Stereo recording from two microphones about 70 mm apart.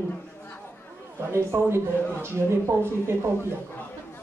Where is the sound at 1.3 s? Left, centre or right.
Right.